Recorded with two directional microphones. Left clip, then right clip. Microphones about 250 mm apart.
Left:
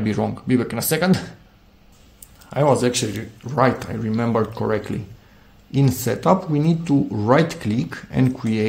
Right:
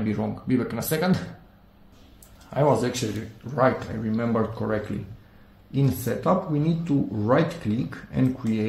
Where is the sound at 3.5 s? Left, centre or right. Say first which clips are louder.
Left 3 dB; left.